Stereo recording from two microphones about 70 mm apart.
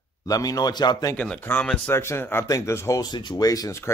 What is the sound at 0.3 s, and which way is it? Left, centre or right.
Speech, left.